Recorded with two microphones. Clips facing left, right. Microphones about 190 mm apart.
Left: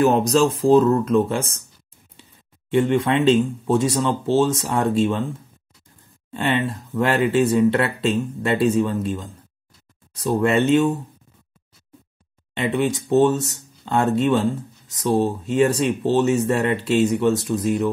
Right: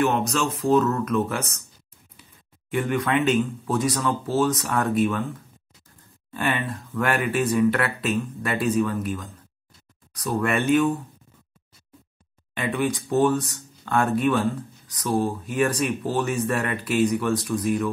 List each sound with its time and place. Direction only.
0.0 s speech: 35° left (ahead or behind)
2.7 s speech: 25° left (ahead or behind)
12.5 s speech: 25° left (ahead or behind)